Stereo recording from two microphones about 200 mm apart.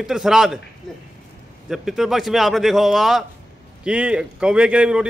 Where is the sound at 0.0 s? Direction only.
5° right (ahead or behind).